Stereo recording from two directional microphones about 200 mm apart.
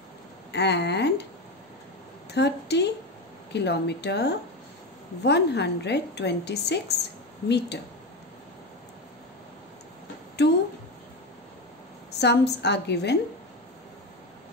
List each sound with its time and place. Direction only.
0.5 s a woman's voice: 60° left (ahead or behind)
2.3 s a woman's voice: 60° left (ahead or behind)
10.4 s a woman's voice: 55° left (ahead or behind)
12.2 s a woman's voice: 60° left (ahead or behind)